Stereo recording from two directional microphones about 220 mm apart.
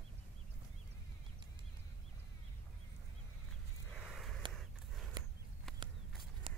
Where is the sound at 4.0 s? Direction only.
Centre (ahead or behind).